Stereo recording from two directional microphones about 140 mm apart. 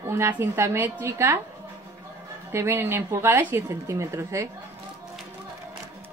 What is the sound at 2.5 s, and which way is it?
Speech, 15° right (ahead or behind).